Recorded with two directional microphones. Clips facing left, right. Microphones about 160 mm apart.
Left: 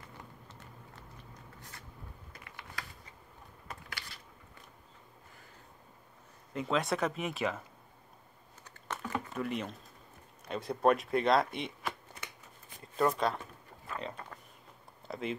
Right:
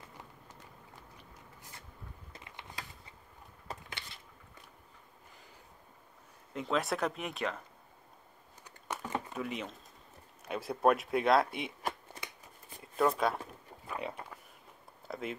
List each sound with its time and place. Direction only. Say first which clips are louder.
2.3 s a sound: even; 20° right (ahead or behind)
6.5 s speech: left 1 dB; centre (ahead or behind)
8.6 s typing: even; 10° right (ahead or behind)
9.3 s speech: left 2 dB; centre (ahead or behind)
12.8 s a sound: even; 5° right (ahead or behind)
15.0 s speech: left 2 dB; centre (ahead or behind)